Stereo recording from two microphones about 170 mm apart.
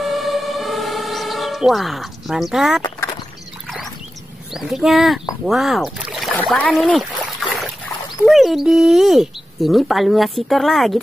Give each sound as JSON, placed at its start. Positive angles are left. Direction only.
{"t": 0.0, "sound": "emergency vehicle", "side_deg": 0}
{"t": 2.8, "sound": "a sound", "side_deg": 25}
{"t": 4.6, "sound": "speech", "side_deg": 0}
{"t": 7.4, "sound": "boat", "side_deg": 0}
{"t": 8.3, "sound": "speech", "side_deg": 0}